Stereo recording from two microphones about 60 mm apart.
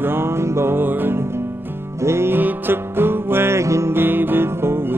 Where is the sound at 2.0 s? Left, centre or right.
Right.